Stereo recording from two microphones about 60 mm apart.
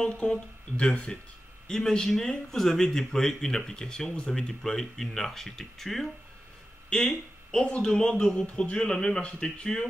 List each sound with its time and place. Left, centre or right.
0.0 s speech: centre
1.7 s speech: centre